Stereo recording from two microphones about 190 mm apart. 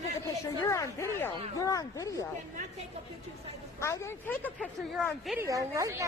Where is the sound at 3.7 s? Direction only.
15° left (ahead or behind).